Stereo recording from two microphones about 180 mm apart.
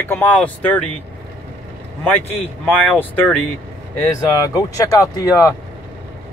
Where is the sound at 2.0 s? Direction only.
10° left (ahead or behind).